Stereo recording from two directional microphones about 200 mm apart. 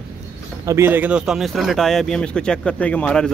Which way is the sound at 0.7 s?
10° right (ahead or behind).